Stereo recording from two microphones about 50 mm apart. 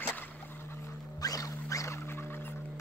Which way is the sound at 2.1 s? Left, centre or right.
Left.